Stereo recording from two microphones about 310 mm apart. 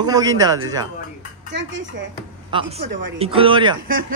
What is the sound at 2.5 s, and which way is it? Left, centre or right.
A man's voice, centre.